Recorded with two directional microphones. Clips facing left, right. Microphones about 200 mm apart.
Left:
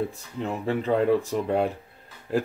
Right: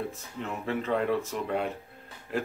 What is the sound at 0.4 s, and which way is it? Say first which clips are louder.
Speech: left 5 dB; 30° left (ahead or behind).